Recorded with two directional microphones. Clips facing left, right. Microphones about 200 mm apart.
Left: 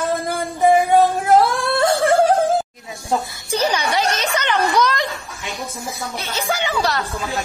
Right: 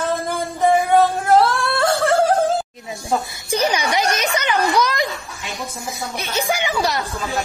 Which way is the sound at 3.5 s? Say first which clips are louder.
Even; 15° right (ahead or behind).